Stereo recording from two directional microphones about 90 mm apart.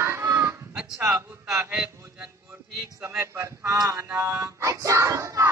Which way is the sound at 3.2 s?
30° right (ahead or behind).